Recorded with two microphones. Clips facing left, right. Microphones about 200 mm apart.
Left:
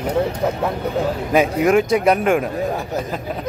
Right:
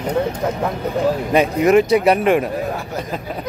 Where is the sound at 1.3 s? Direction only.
Centre (ahead or behind).